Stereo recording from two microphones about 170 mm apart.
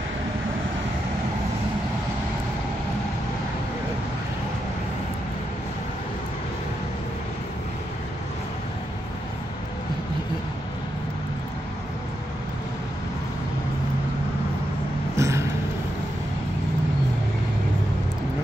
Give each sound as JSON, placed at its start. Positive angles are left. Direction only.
{"t": 15.1, "sound": "music", "side_deg": -15}